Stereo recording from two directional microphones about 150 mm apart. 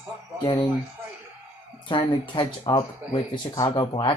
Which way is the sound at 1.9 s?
30° left (ahead or behind).